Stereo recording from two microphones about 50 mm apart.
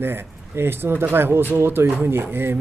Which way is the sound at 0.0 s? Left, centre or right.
Right.